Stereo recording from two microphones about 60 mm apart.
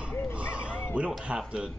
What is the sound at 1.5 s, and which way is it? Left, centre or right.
Speech, centre.